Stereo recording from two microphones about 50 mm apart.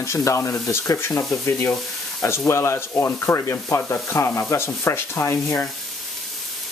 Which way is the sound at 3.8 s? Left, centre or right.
Left.